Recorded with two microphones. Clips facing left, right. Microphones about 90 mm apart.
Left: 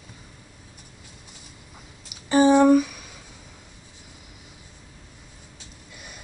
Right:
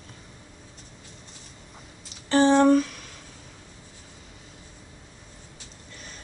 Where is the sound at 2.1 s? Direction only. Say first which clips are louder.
Left 2 dB; 10° left (ahead or behind).